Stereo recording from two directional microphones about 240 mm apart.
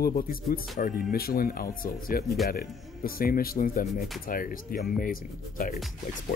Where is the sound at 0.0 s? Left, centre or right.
Left.